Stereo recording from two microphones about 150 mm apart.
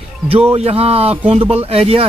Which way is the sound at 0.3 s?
40° right (ahead or behind).